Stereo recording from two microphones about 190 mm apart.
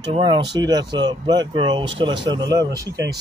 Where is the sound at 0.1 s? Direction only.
25° right (ahead or behind).